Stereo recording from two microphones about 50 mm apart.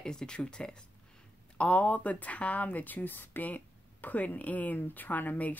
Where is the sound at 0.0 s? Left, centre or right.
Centre.